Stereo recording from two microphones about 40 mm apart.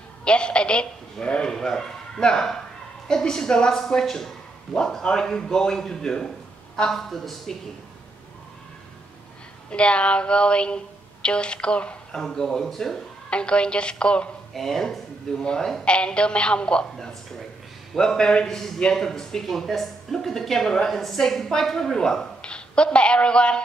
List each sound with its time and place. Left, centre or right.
0.2 s a sound: left
1.2 s a woman's voice: left; by 7.5 s centre
9.7 s speech: left
12.2 s a woman's voice: centre
13.3 s speech: left
14.5 s speech: centre
15.4 s speech: centre
17.9 s a woman's voice: centre